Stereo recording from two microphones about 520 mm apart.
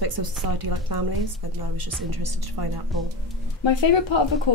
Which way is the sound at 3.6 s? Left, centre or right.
Left.